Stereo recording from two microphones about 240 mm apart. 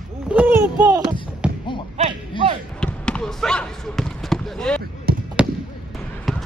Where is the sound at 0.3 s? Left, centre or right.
Centre.